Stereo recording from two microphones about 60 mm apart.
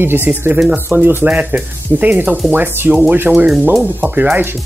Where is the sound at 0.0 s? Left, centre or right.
Right.